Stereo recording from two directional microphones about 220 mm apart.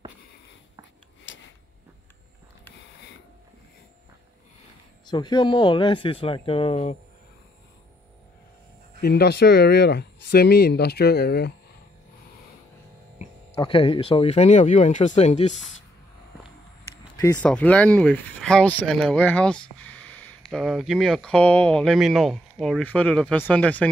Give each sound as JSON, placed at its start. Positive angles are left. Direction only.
{"t": 1.3, "sound": "a sound", "side_deg": 60}
{"t": 5.1, "sound": "speech", "side_deg": 20}
{"t": 9.0, "sound": "speech", "side_deg": 45}
{"t": 13.2, "sound": "speech", "side_deg": 25}
{"t": 17.2, "sound": "speech", "side_deg": 15}